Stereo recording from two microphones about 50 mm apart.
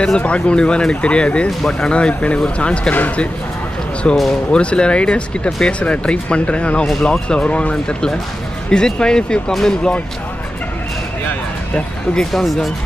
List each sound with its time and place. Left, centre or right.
0.2 s speech: left
4.1 s speech: left
12.3 s speech: centre